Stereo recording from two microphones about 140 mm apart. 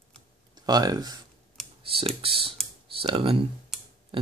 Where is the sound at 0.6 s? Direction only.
30° right (ahead or behind).